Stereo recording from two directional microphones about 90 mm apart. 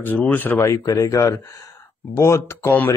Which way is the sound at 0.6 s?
40° left (ahead or behind).